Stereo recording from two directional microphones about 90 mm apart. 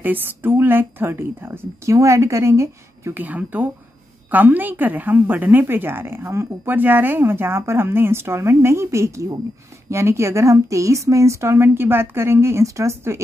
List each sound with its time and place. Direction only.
0.0 s a woman's voice: 20° right (ahead or behind)
3.3 s a woman's voice: 20° right (ahead or behind)